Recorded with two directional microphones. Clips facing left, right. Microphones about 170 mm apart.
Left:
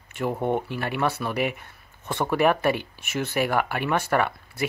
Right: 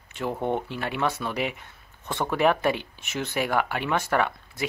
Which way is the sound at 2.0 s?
15° left (ahead or behind).